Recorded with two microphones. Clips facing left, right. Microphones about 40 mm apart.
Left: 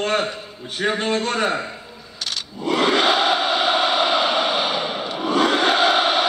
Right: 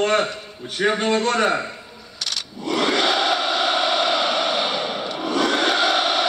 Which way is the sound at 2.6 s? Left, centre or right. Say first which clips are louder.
Left 2 dB; centre.